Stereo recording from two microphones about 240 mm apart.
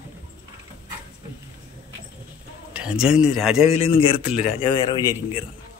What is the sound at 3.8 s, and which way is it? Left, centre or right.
A man's voice, left.